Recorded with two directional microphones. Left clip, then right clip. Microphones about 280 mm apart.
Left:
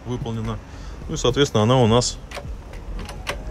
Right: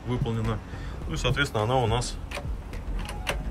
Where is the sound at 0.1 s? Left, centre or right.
Centre.